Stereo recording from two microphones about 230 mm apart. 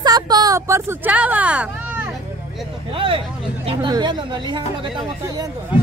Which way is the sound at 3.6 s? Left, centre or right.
Centre.